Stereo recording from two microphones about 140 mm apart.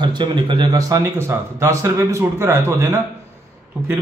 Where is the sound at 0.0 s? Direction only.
35° right (ahead or behind).